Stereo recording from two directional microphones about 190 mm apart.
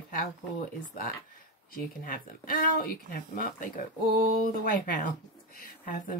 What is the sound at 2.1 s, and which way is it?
Speech, 50° left (ahead or behind).